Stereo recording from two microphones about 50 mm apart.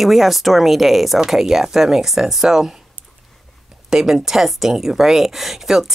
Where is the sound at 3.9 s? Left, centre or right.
Centre.